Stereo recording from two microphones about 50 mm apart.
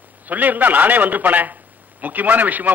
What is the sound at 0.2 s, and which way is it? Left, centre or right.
A man's voice, right.